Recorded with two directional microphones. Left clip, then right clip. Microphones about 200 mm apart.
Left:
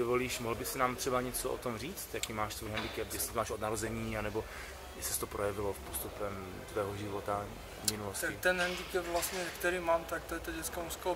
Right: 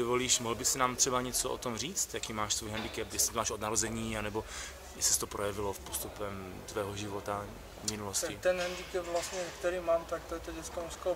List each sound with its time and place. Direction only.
0.0 s speech: 30° right (ahead or behind)
8.4 s speech: 5° left (ahead or behind)